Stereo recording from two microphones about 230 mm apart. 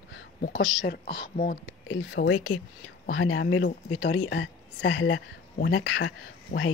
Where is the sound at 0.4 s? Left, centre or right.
Left.